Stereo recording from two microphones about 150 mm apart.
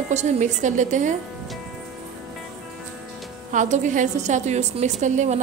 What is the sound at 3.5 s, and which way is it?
A woman's voice, 55° right (ahead or behind).